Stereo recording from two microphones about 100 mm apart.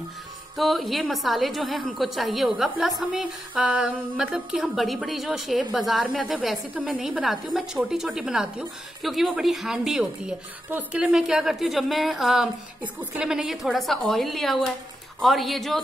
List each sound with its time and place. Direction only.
0.6 s a woman's voice: centre (ahead or behind)